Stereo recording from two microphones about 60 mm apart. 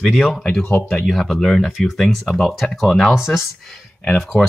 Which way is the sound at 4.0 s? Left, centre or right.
Left.